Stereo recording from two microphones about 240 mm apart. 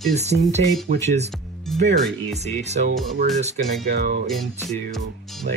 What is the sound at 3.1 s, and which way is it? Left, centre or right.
Speech, right.